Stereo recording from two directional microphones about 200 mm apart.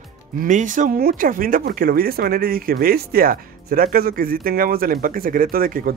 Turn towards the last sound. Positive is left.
turn(degrees=-45)  # may be behind; listen again after turning